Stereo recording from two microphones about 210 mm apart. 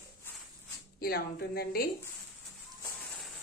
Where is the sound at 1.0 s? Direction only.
45° left (ahead or behind).